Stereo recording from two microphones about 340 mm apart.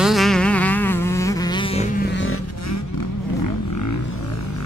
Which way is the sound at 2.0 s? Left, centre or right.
Left.